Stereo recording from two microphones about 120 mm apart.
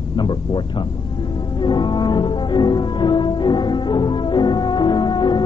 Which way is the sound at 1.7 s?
40° left (ahead or behind).